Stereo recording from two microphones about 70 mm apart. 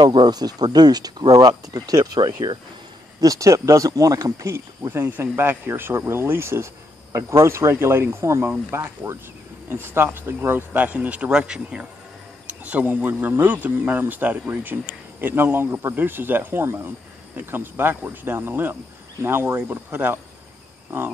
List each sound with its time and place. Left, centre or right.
0.0 s speech: right
3.2 s speech: right
5.0 s speech: right
8.5 s speech: right; by 11.9 s centre
12.6 s speech: right